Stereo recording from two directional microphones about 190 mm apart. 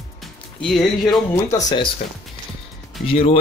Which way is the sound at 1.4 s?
20° left (ahead or behind).